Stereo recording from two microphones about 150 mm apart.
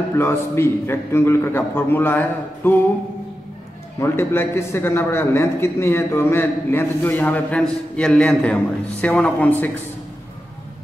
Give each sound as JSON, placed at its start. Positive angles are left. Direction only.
{"t": 0.2, "sound": "a man's voice", "side_deg": 15}
{"t": 4.0, "sound": "a man's voice", "side_deg": 15}